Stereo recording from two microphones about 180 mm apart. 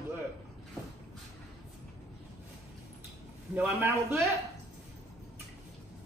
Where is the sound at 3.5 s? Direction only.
10° right (ahead or behind).